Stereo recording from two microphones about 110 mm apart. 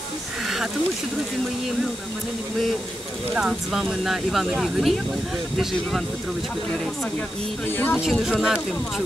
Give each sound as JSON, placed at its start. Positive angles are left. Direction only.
{"t": 3.3, "sound": "speech", "side_deg": -5}
{"t": 7.6, "sound": "speech", "side_deg": 20}
{"t": 8.0, "sound": "speech", "side_deg": -5}